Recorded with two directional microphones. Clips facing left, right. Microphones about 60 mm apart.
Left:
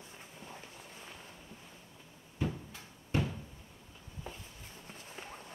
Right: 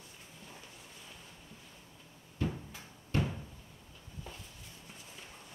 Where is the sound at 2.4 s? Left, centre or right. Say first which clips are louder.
Even; centre.